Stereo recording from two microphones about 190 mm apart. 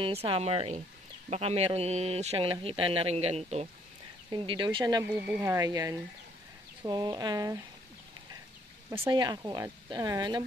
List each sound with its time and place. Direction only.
0.0 s speech: 30° right (ahead or behind)
9.0 s speech: 20° right (ahead or behind)